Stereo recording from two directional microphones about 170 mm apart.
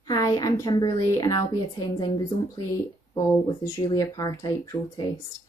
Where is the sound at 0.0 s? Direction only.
20° left (ahead or behind).